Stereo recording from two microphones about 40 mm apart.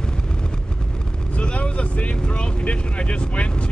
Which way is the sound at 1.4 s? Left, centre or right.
Left.